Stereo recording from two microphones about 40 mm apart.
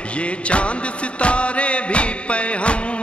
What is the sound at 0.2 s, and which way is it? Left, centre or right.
Music, left.